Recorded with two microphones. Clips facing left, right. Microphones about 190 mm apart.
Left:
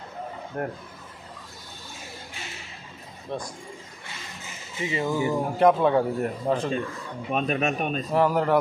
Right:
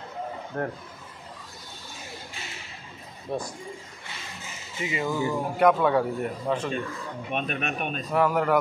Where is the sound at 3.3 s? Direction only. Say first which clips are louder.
Right 2 dB; 10° right (ahead or behind).